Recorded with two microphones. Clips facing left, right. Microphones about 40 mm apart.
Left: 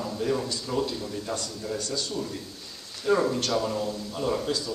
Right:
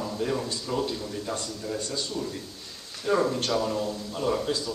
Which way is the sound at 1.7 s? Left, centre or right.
Centre.